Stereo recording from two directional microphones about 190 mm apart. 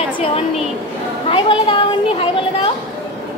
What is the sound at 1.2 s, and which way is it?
Speech, 25° left (ahead or behind).